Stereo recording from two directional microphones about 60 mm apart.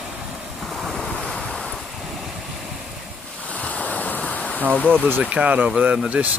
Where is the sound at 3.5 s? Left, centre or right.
Left.